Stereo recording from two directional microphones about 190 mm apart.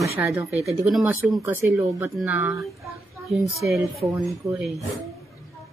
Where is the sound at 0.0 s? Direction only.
15° right (ahead or behind).